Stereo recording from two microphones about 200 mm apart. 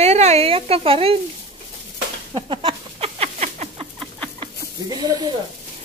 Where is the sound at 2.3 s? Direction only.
25° right (ahead or behind).